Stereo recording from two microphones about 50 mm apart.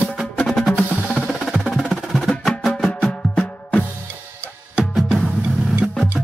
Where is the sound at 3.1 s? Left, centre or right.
Left.